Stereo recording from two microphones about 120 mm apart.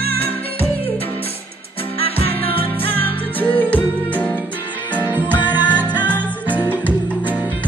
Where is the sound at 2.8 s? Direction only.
15° left (ahead or behind).